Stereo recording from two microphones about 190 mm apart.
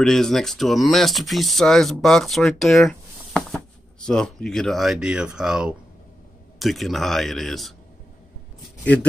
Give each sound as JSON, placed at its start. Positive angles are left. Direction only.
{"t": 0.0, "sound": "speech", "side_deg": 0}